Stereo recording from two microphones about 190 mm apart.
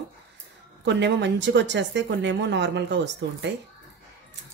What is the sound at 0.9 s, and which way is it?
Speech, 65° right (ahead or behind).